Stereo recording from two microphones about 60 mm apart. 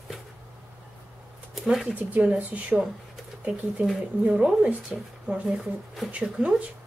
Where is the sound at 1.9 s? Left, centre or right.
Right.